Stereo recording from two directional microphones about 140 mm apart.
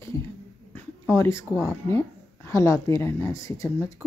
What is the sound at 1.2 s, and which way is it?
A woman's voice, 20° left (ahead or behind).